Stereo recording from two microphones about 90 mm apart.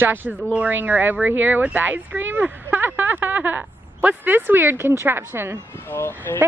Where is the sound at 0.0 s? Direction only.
20° right (ahead or behind).